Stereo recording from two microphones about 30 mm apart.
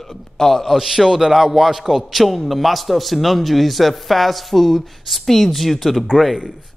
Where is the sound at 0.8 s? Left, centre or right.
Centre.